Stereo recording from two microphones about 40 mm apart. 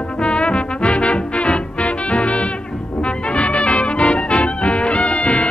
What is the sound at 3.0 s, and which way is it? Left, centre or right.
Music, left.